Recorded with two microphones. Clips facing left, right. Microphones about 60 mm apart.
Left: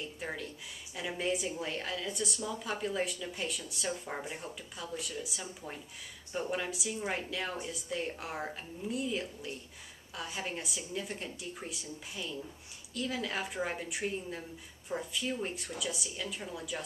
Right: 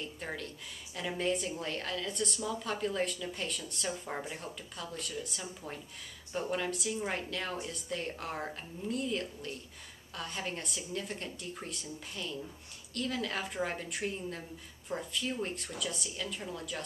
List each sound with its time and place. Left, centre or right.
0.0 s a woman's voice: centre